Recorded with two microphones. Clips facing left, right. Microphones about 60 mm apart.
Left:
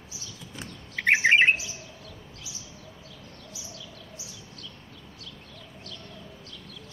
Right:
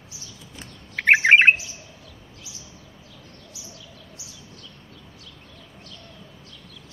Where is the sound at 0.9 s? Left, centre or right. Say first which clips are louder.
Right 5 dB; right.